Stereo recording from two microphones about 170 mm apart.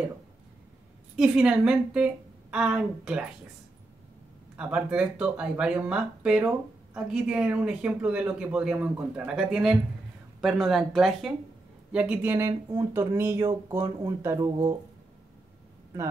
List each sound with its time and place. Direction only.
1.1 s speech: 5° right (ahead or behind)
4.6 s speech: 5° right (ahead or behind)